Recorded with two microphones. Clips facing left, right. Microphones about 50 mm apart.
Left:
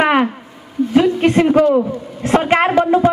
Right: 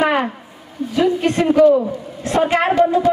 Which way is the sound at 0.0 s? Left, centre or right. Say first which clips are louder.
Left 3 dB; left.